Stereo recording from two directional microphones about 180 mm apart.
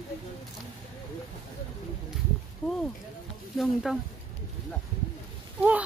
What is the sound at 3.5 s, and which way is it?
Speech, centre (ahead or behind).